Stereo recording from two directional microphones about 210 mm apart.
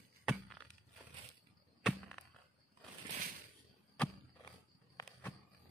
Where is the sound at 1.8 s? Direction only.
5° left (ahead or behind).